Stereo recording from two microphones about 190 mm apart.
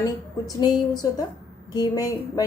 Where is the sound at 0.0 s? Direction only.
20° left (ahead or behind).